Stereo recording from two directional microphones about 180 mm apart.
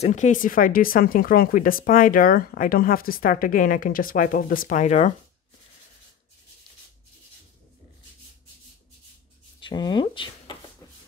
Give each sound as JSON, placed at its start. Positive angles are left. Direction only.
{"t": 0.0, "sound": "speech", "side_deg": 40}
{"t": 9.6, "sound": "speech", "side_deg": 25}